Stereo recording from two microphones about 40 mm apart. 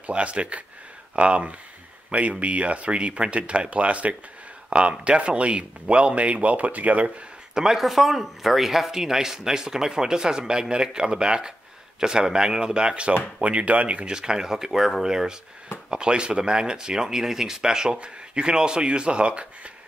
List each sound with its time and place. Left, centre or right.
0.0 s speech: right
7.5 s speech: centre
7.8 s speech: centre; by 14.0 s right
14.0 s speech: centre